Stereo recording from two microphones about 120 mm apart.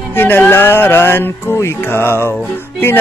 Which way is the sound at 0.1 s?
15° left (ahead or behind).